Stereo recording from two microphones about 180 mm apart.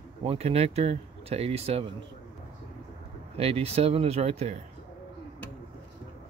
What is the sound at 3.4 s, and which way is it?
Speech, 35° right (ahead or behind).